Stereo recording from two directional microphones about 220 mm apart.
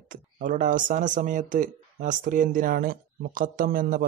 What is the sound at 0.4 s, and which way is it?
Speech, 35° right (ahead or behind).